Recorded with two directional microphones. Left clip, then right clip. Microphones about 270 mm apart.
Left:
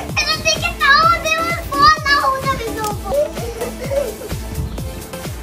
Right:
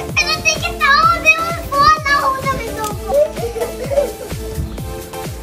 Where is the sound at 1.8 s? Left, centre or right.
Centre.